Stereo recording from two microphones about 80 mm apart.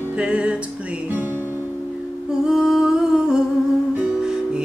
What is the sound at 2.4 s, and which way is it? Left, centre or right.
Humming, centre.